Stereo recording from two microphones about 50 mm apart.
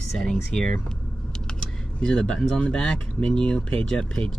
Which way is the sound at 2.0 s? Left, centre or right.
Centre.